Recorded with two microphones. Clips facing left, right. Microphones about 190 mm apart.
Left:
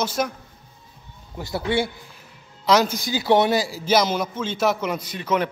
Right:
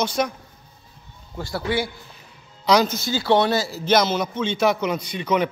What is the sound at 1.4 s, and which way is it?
Speech, 20° left (ahead or behind).